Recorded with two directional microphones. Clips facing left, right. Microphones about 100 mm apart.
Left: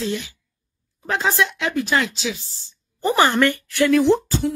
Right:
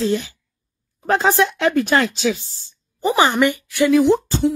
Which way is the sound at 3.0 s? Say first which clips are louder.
Right 1 dB; 15° right (ahead or behind).